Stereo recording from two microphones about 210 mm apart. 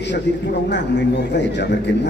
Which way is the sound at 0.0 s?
55° left (ahead or behind).